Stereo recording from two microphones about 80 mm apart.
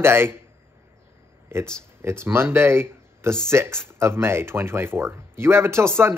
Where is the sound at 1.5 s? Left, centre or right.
Right.